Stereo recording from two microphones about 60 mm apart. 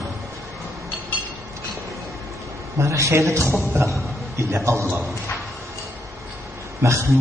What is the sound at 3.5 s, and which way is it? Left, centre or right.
Speech, right.